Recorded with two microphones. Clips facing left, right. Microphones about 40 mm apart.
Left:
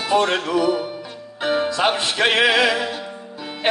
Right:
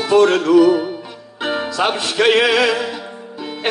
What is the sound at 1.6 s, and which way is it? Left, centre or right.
Music, centre.